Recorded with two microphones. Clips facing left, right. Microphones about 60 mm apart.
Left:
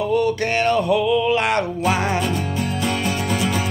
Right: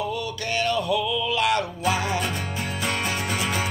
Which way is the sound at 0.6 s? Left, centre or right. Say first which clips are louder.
Left 4 dB; left.